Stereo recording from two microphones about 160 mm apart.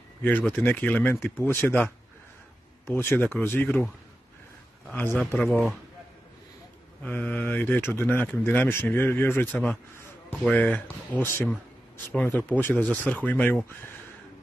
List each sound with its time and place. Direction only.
0.2 s speech: 10° left (ahead or behind)
2.9 s speech: 15° left (ahead or behind)
4.9 s speech: 10° left (ahead or behind)
5.4 s a man's voice: centre (ahead or behind)
7.0 s speech: 10° left (ahead or behind)